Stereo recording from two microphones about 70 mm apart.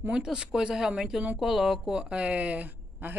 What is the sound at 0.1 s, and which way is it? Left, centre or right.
A woman's voice, centre.